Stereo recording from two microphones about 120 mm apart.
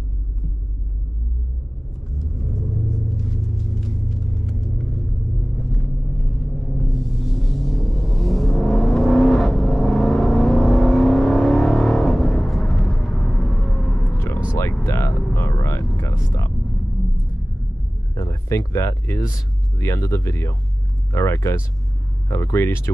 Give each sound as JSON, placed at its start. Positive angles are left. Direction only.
{"t": 2.1, "sound": "rumble", "side_deg": 0}
{"t": 5.4, "sound": "timpani", "side_deg": 0}
{"t": 14.1, "sound": "a sound", "side_deg": 20}
{"t": 15.3, "sound": "music", "side_deg": 25}
{"t": 18.1, "sound": "a sound", "side_deg": 25}
{"t": 19.8, "sound": "speech", "side_deg": 25}